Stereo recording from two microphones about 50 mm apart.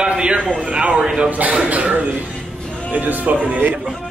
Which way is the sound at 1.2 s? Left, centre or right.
Right.